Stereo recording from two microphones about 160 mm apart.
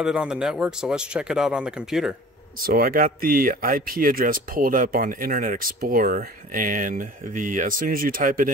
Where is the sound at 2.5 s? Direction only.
65° right (ahead or behind).